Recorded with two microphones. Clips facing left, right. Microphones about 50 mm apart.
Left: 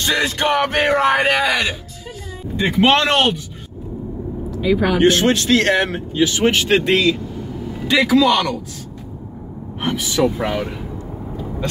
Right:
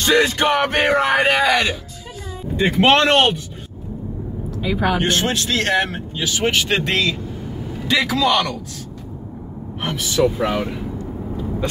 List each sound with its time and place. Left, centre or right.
0.0 s speech: centre
2.5 s speech: centre
4.6 s speech: centre
6.2 s speech: centre
9.8 s speech: centre